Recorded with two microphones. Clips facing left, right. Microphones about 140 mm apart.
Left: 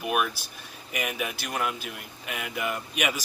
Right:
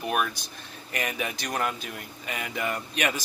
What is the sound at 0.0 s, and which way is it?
Speech, 5° left (ahead or behind).